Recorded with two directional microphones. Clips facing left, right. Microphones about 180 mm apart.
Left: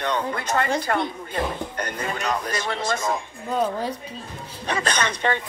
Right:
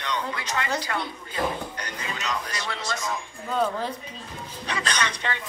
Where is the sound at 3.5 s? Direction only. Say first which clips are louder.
Left 2 dB; 15° left (ahead or behind).